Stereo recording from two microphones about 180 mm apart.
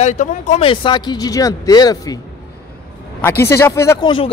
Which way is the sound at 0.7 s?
25° left (ahead or behind).